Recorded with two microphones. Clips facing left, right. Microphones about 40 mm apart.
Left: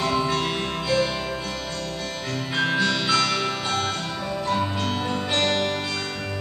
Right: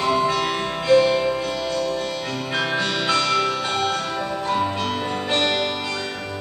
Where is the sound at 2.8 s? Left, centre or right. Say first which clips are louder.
Even; right.